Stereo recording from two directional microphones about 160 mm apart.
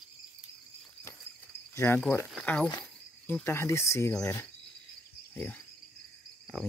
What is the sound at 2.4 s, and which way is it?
Speech, 10° left (ahead or behind).